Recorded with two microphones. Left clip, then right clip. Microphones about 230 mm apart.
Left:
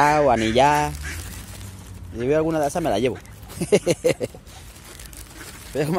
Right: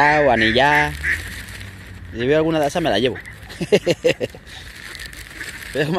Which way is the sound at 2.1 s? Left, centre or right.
Centre.